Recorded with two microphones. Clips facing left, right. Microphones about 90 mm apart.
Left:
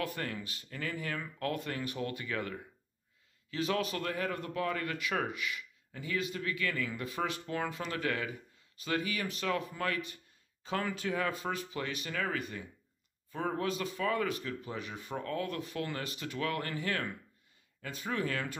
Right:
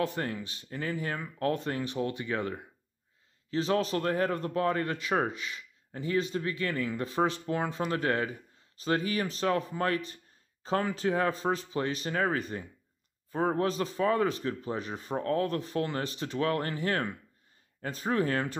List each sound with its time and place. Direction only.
0.0 s a man's voice: 25° right (ahead or behind)